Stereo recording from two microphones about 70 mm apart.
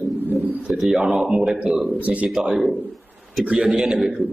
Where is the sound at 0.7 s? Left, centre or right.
Centre; by 2.2 s right.